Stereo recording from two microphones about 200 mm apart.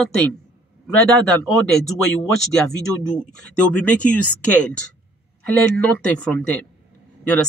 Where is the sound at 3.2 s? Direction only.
5° left (ahead or behind).